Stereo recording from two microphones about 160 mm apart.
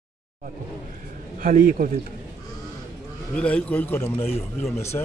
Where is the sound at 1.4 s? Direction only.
60° right (ahead or behind).